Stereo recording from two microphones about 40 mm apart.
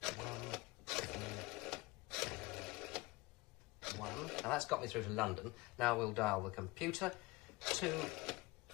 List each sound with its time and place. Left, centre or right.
0.0 s sewing machine: centre
3.8 s speech: centre